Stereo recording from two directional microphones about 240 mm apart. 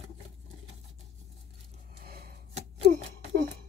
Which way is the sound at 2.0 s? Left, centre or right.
Right.